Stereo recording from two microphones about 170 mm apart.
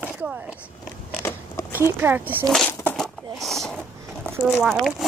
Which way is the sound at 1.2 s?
15° left (ahead or behind).